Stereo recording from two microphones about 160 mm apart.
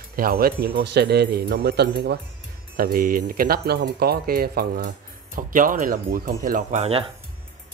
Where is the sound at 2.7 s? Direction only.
60° right (ahead or behind).